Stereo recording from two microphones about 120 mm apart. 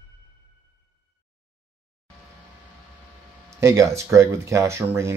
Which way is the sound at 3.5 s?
25° right (ahead or behind).